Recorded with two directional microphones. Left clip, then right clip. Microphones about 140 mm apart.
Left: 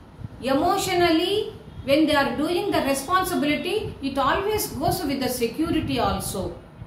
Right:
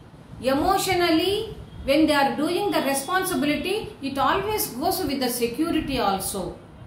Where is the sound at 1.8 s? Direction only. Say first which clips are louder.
Even; 5° right (ahead or behind).